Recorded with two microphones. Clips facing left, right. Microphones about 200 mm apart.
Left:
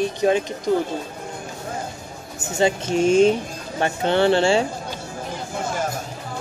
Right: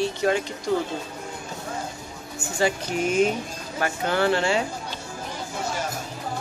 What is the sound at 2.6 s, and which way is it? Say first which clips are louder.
Speech: left 5 dB; 25° left (ahead or behind).